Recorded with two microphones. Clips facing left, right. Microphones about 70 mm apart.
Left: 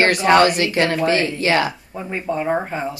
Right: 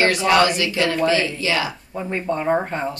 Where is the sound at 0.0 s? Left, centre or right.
Left.